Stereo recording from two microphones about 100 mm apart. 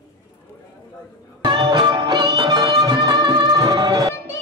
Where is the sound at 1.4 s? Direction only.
50° right (ahead or behind).